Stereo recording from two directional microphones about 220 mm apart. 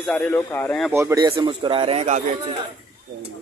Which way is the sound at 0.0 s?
5° left (ahead or behind).